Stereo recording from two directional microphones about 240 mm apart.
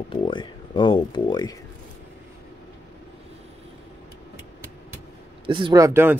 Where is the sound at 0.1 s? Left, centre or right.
Centre.